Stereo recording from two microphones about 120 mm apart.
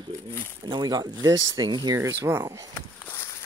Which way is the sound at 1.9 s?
25° right (ahead or behind).